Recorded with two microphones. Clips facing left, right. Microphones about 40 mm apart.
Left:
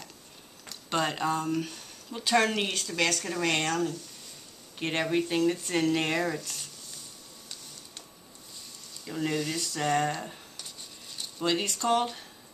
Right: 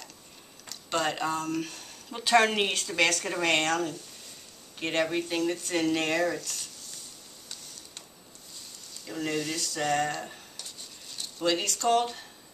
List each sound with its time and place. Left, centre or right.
0.7 s speech: centre
2.1 s speech: centre
5.0 s speech: centre
9.0 s speech: centre
10.2 s a sound: centre
11.6 s speech: centre